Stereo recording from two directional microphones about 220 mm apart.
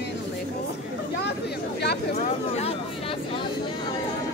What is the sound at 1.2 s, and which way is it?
Chatter, 50° left (ahead or behind).